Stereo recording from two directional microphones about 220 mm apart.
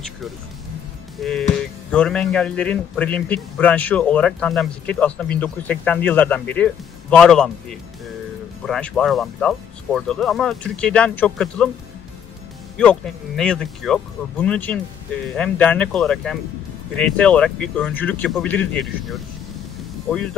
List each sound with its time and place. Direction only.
1.2 s a man's voice: centre (ahead or behind)
8.6 s a man's voice: 5° left (ahead or behind)
12.7 s a man's voice: 5° left (ahead or behind)